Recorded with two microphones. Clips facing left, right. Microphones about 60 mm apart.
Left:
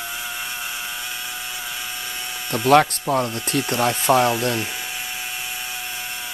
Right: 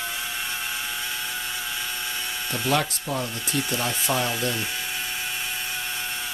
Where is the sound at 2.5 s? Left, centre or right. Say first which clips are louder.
Left 10 dB; left.